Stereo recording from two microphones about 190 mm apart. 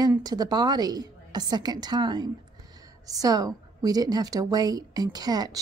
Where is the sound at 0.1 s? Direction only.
20° right (ahead or behind).